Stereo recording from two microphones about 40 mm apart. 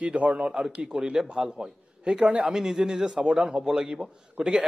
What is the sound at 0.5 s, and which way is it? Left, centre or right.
A man's voice, centre.